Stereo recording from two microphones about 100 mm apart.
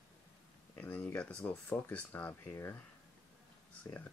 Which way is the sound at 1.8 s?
15° left (ahead or behind).